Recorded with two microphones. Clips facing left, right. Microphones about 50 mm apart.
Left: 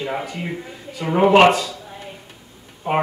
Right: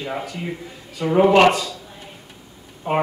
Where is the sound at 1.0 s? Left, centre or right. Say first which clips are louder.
Left 1 dB; centre.